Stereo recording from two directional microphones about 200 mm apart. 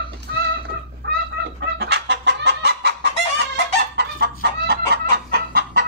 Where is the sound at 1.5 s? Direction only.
60° right (ahead or behind).